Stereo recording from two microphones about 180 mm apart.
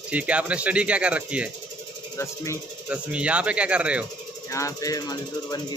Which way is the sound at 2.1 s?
15° left (ahead or behind).